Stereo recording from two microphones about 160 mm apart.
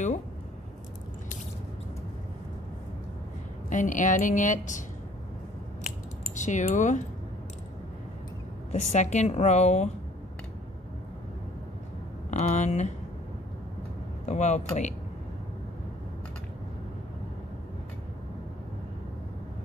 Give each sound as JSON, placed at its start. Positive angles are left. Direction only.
{"t": 3.7, "sound": "a woman's voice", "side_deg": 55}
{"t": 5.9, "sound": "a sound", "side_deg": 50}
{"t": 8.7, "sound": "a woman's voice", "side_deg": 50}
{"t": 12.3, "sound": "a woman's voice", "side_deg": 50}
{"t": 14.2, "sound": "speech", "side_deg": 45}